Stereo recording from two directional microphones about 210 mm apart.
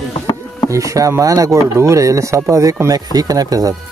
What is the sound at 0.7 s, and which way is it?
Speech, 15° right (ahead or behind).